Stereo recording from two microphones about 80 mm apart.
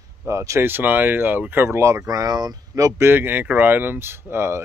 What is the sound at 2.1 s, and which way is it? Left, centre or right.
Speech, right.